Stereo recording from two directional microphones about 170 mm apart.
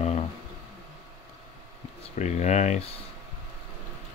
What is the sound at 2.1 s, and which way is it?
Speech, 40° left (ahead or behind).